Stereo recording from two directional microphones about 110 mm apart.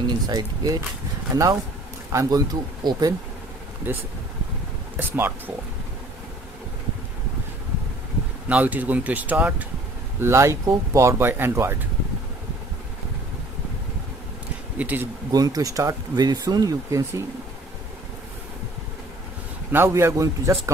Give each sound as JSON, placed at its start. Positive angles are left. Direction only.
{"t": 0.0, "sound": "speech", "side_deg": -35}
{"t": 3.8, "sound": "speech", "side_deg": -15}
{"t": 8.5, "sound": "speech", "side_deg": -15}
{"t": 10.2, "sound": "a man's voice", "side_deg": -25}
{"t": 14.8, "sound": "speech", "side_deg": -15}
{"t": 15.3, "sound": "speech", "side_deg": -35}
{"t": 19.7, "sound": "a man's voice", "side_deg": -20}